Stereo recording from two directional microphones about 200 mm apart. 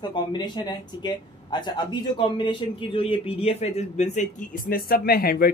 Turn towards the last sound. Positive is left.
turn(degrees=50)  # may be behind; listen again after turning